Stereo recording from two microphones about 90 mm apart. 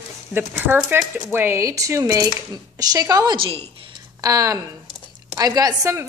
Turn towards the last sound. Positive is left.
turn(degrees=-40)  # may be behind; listen again after turning